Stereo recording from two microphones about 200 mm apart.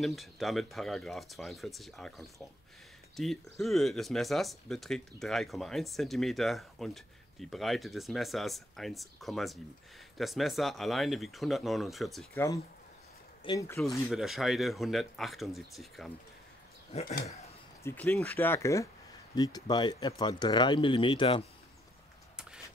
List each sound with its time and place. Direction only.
0.0 s speech: centre (ahead or behind)
13.4 s speech: 25° left (ahead or behind)
14.0 s speech: centre (ahead or behind)
16.9 s a sound: 30° left (ahead or behind)
17.8 s speech: 10° left (ahead or behind)